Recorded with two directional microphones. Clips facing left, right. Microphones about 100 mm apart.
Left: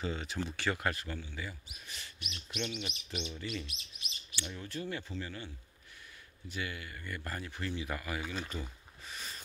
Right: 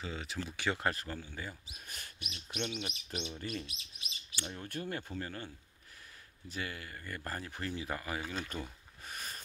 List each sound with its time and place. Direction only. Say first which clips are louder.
0.0 s speech: left 4 dB; centre (ahead or behind)
0.5 s speech: right 1 dB; 15° right (ahead or behind)
0.7 s speech: even; 35° right (ahead or behind)
6.5 s speech: left 1 dB; 35° right (ahead or behind)
8.3 s speech: even; 45° right (ahead or behind)